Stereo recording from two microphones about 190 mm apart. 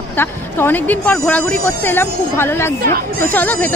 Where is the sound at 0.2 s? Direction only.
10° left (ahead or behind).